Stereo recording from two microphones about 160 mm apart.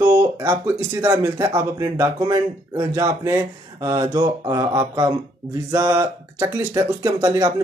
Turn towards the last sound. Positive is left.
turn(degrees=-25)  # may be behind; listen again after turning